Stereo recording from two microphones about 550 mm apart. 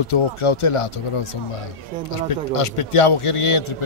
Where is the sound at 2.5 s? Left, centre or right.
Left.